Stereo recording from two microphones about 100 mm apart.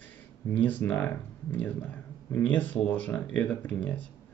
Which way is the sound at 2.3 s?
20° left (ahead or behind).